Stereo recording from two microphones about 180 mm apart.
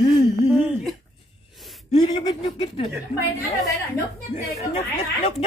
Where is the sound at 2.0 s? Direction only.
30° left (ahead or behind).